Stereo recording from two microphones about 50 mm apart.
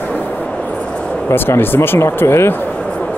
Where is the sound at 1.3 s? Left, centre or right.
Left.